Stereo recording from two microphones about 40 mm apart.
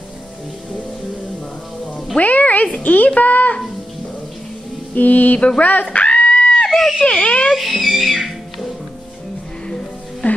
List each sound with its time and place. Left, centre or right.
2.1 s speech: left
4.9 s speech: left
5.9 s a sound: left
6.7 s a sound: centre
7.2 s speech: left
7.5 s music: centre
10.2 s music: left